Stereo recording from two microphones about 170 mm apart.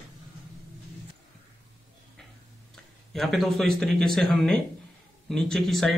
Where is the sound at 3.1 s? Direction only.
Centre (ahead or behind).